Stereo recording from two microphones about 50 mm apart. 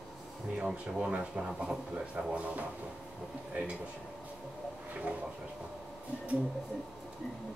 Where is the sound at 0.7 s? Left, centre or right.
Centre.